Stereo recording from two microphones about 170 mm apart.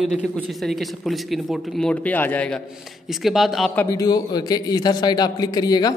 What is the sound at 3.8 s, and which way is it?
A man's voice, 20° left (ahead or behind).